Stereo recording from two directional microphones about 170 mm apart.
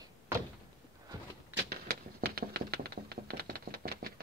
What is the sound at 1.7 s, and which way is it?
Tap, 65° right (ahead or behind).